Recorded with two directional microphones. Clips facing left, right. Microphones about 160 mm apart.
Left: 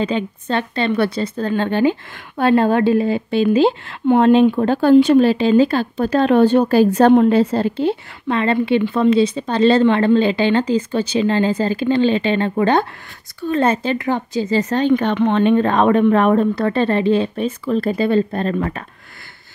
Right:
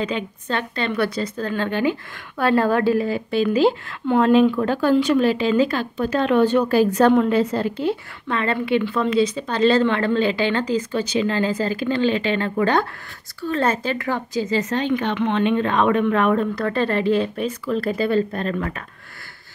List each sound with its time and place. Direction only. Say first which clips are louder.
0.0 s speech: left 5 dB; 30° left (ahead or behind)